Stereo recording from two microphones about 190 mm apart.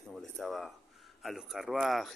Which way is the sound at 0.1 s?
Centre (ahead or behind).